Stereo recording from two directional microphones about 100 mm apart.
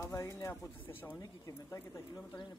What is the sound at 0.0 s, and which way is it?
Speech, 30° left (ahead or behind).